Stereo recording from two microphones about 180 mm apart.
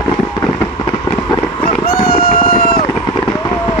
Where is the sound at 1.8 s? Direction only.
60° left (ahead or behind).